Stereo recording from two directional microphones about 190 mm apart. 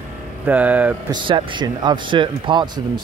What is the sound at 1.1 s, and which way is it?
Speech, 25° right (ahead or behind).